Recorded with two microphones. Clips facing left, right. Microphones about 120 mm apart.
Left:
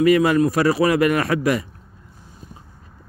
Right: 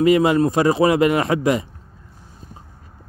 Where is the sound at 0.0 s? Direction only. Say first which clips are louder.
Even; 20° right (ahead or behind).